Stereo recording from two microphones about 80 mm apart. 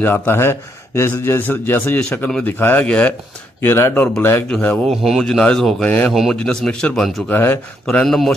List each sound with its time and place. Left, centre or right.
0.0 s a man's voice: left
2.0 s a man's voice: centre
3.6 s a man's voice: left
4.5 s a man's voice: centre
4.8 s speech: centre
5.9 s a man's voice: centre
7.2 s a man's voice: left
7.9 s a man's voice: centre